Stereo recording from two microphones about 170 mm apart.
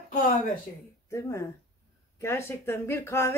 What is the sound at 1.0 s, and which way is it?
Speech, 15° left (ahead or behind).